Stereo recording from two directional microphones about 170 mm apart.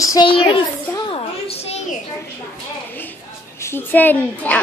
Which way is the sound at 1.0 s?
35° left (ahead or behind).